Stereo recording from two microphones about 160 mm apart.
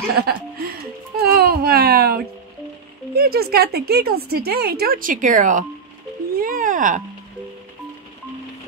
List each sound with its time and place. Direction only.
0.1 s speech: 70° right (ahead or behind); by 7.0 s 55° right (ahead or behind)